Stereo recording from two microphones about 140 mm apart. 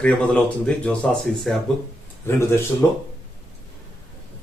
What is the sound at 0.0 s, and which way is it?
Speech, 10° left (ahead or behind).